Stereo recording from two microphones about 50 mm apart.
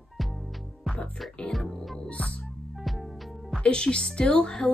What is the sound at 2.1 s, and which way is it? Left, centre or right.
Music, left.